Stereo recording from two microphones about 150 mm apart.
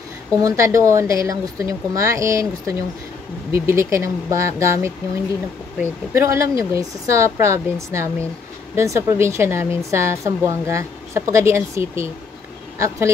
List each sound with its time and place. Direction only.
0.4 s a woman's voice: 20° right (ahead or behind)